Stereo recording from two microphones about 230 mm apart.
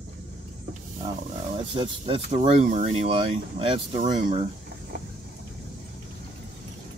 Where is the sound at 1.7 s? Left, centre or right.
Right.